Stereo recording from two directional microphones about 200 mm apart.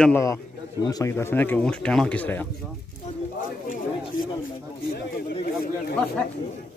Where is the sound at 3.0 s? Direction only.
40° left (ahead or behind).